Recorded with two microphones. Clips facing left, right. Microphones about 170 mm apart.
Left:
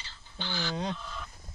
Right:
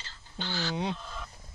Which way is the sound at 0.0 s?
40° right (ahead or behind).